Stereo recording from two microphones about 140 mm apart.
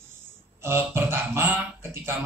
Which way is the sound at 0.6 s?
15° right (ahead or behind).